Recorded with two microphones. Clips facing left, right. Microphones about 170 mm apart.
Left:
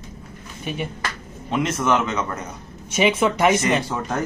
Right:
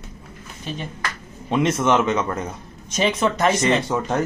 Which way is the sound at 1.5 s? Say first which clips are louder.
Right 2 dB; 25° right (ahead or behind).